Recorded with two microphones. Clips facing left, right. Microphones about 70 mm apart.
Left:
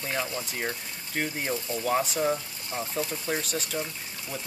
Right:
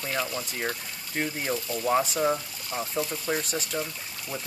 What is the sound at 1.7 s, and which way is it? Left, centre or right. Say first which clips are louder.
Speech: even; left.